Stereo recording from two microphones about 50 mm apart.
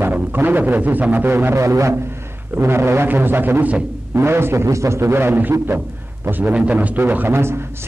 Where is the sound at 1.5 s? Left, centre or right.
Right.